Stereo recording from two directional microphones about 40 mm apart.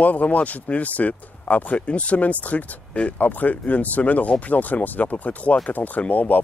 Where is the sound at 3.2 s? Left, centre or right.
Left.